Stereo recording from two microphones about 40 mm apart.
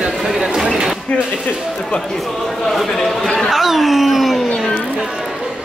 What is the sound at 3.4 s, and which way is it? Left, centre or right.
A man's voice, centre.